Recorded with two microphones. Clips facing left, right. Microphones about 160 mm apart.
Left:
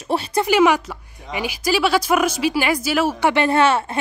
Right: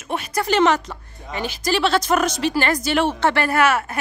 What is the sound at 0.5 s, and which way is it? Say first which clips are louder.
Speech: left 1 dB; 10° left (ahead or behind).